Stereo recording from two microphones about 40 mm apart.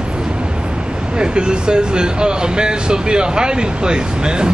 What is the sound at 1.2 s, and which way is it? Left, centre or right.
Speech, right.